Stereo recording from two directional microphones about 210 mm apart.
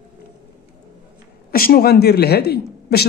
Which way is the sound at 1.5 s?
45° left (ahead or behind).